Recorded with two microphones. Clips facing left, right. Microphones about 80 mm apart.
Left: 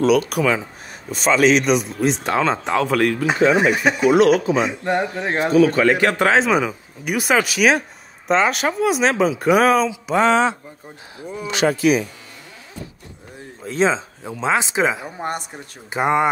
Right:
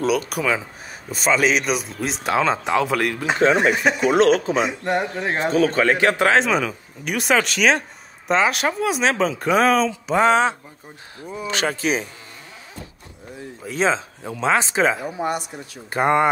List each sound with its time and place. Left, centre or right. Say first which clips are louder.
0.0 s speech: left 5 dB; centre
4.1 s a man's voice: left 3 dB; right
4.6 s speech: left 1 dB; centre
5.5 s a man's voice: left 4 dB; right
6.1 s speech: left 1 dB; centre
11.1 s a man's voice: left 3 dB; right
13.7 s speech: left 2 dB; left
14.3 s speech: even; centre
15.2 s speech: even; left
15.9 s speech: even; centre